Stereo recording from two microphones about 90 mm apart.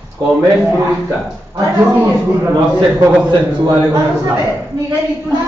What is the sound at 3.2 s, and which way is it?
Speech, 55° right (ahead or behind).